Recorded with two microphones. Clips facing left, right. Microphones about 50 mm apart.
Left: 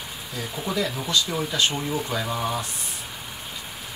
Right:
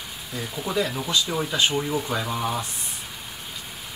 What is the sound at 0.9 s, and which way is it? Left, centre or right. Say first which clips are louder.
Speech: even; centre.